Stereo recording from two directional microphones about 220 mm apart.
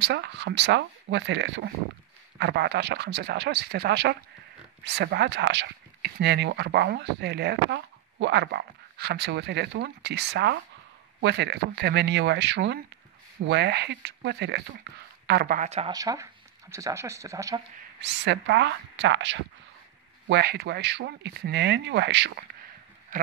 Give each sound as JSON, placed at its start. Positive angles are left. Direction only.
{"t": 0.0, "sound": "a man's voice", "side_deg": -50}
{"t": 15.9, "sound": "speech", "side_deg": -15}
{"t": 18.0, "sound": "speech", "side_deg": -55}